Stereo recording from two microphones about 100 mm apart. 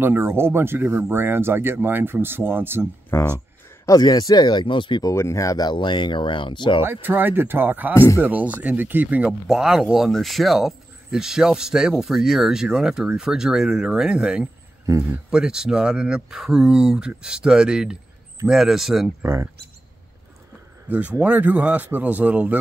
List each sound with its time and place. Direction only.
0.0 s speech: 25° right (ahead or behind)
3.1 s speech: 30° left (ahead or behind); by 5.0 s 55° left (ahead or behind)
5.0 s speech: 30° left (ahead or behind); by 6.8 s 55° left (ahead or behind)
6.8 s speech: 20° right (ahead or behind)
7.9 s speech: 25° left (ahead or behind)
8.2 s speech: 15° right (ahead or behind)
9.5 s speech: centre (ahead or behind)
19.2 s speech: 30° right (ahead or behind)
20.9 s speech: 15° right (ahead or behind)